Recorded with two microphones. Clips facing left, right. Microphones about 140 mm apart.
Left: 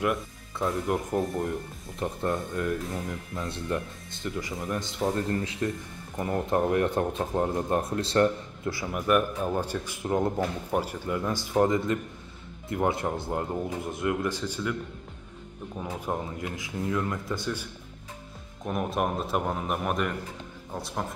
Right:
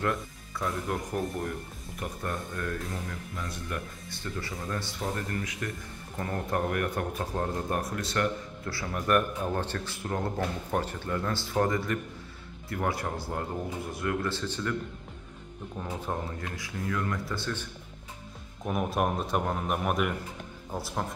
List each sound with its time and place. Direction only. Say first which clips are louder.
0.0 s speech: left 3 dB; 25° left (ahead or behind)
8.6 s speech: left 3 dB; 15° left (ahead or behind)
15.8 s speech: left 2 dB; 15° left (ahead or behind)
18.6 s speech: even; centre (ahead or behind)